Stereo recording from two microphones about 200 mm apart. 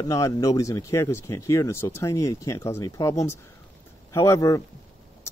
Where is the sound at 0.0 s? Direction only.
15° left (ahead or behind).